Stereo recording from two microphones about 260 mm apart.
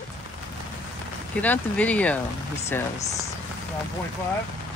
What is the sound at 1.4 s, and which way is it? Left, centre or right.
Speech, centre.